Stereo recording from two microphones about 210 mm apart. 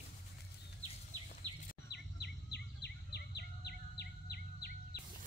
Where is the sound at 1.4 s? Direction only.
20° right (ahead or behind).